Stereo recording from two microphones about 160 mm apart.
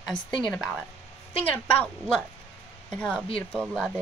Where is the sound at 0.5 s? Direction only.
5° left (ahead or behind).